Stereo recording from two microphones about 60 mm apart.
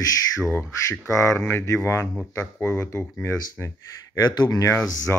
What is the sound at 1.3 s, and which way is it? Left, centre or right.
Speech, left.